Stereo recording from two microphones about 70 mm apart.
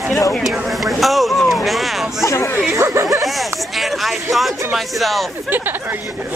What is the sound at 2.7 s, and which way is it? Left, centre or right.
Speech, right.